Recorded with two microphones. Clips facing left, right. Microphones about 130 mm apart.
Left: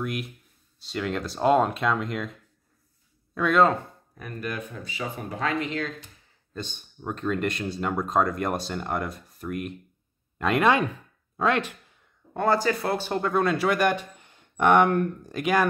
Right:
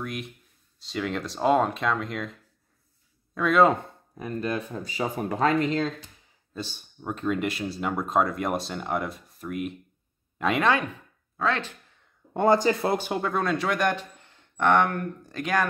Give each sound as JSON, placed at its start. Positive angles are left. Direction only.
{"t": 0.0, "sound": "speech", "side_deg": 0}
{"t": 3.3, "sound": "speech", "side_deg": 0}
{"t": 3.6, "sound": "speech", "side_deg": -20}
{"t": 6.5, "sound": "speech", "side_deg": -5}
{"t": 11.3, "sound": "a sound", "side_deg": 15}
{"t": 12.4, "sound": "speech", "side_deg": -20}
{"t": 13.2, "sound": "speech", "side_deg": 0}